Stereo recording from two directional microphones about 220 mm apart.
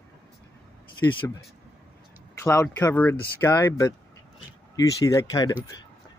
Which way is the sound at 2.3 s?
10° left (ahead or behind).